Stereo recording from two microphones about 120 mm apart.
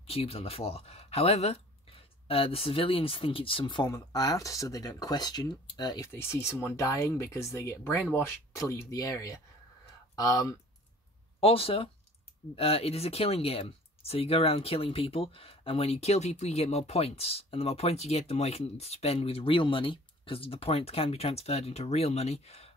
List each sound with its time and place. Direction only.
0.0 s speech: 55° left (ahead or behind)
3.9 s speech: 30° left (ahead or behind)
6.1 s speech: 20° left (ahead or behind)
11.3 s speech: 50° left (ahead or behind)